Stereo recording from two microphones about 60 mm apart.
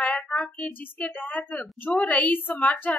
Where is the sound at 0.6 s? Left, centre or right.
Left.